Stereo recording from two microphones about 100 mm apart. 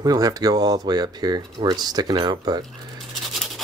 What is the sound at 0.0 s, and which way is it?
Speech, 40° right (ahead or behind).